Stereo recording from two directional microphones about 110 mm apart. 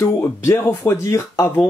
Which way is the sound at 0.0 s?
25° left (ahead or behind).